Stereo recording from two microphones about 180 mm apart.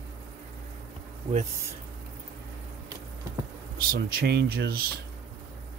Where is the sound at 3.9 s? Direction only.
65° right (ahead or behind).